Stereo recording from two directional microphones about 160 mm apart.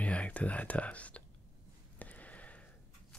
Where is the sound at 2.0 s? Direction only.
10° left (ahead or behind).